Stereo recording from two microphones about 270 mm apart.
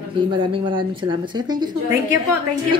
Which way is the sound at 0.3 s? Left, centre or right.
Centre.